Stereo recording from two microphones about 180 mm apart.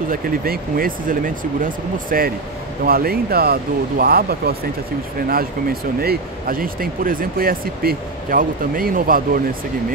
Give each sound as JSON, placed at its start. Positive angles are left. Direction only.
{"t": 0.1, "sound": "speech", "side_deg": -55}